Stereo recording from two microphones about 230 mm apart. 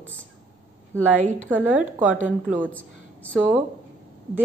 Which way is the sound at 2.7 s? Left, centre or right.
Centre.